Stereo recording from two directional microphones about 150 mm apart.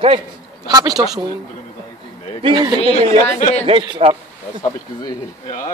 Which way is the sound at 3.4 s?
50° left (ahead or behind).